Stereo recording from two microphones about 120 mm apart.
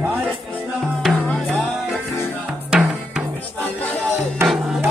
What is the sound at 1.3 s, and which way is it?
Music, 5° left (ahead or behind).